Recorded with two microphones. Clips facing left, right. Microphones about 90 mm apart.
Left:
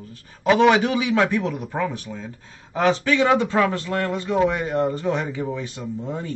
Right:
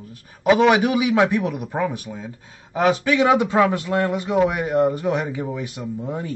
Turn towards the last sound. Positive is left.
turn(degrees=-15)  # may be behind; listen again after turning